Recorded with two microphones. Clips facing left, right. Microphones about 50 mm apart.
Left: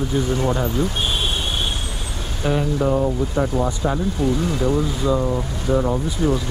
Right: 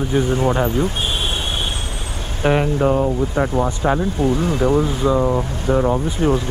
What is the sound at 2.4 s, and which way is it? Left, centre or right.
Speech, right.